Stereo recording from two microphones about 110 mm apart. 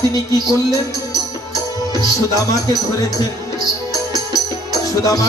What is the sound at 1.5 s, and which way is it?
Speech, 30° left (ahead or behind).